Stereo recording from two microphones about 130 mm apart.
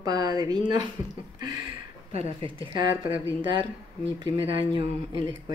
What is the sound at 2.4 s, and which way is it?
Speech, 40° right (ahead or behind).